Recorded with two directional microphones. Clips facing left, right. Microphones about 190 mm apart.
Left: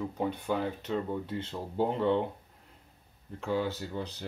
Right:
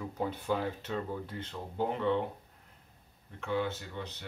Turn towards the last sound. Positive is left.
turn(degrees=35)  # may be behind; listen again after turning